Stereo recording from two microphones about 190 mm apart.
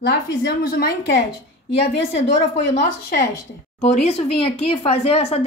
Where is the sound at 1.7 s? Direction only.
35° left (ahead or behind).